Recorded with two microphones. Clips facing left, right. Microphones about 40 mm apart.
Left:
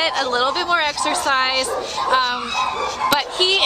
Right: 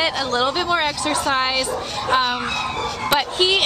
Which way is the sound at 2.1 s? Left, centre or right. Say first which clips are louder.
Left 1 dB; centre.